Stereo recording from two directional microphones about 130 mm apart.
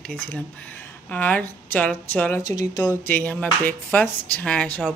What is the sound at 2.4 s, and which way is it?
Speech, 30° left (ahead or behind).